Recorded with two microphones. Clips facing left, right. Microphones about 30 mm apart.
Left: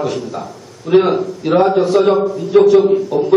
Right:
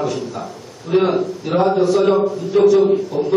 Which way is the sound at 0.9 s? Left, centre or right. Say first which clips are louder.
Left 4 dB; left.